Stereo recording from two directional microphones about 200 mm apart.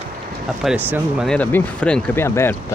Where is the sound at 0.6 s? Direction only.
5° right (ahead or behind).